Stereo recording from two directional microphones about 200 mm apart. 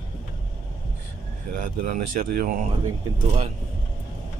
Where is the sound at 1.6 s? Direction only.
40° right (ahead or behind).